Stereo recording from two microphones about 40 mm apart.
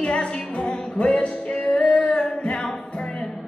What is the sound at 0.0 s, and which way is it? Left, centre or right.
Music, left.